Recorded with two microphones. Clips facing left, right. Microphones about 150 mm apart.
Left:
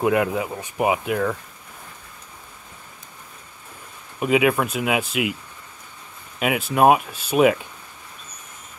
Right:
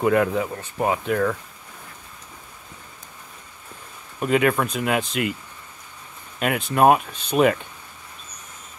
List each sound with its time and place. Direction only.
0.0 s speech: 5° left (ahead or behind)
4.2 s speech: 5° left (ahead or behind)
6.4 s speech: 5° left (ahead or behind)